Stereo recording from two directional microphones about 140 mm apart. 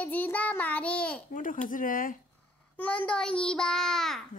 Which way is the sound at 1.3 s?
70° left (ahead or behind).